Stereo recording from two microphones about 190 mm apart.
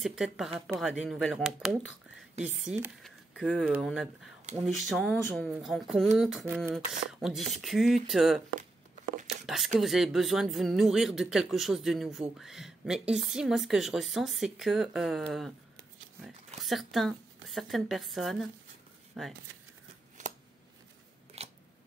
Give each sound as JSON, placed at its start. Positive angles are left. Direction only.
{"t": 0.0, "sound": "speech", "side_deg": 0}
{"t": 2.3, "sound": "speech", "side_deg": -35}
{"t": 2.7, "sound": "speech", "side_deg": -5}
{"t": 9.8, "sound": "speech", "side_deg": 0}
{"t": 16.6, "sound": "speech", "side_deg": 0}
{"t": 20.2, "sound": "scissors", "side_deg": -40}
{"t": 21.4, "sound": "scissors", "side_deg": -35}